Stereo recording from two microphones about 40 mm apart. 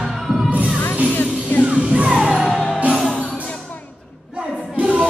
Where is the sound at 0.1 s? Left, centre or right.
Centre.